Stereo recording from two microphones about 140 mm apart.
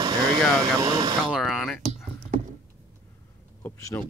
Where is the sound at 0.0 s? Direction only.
30° right (ahead or behind).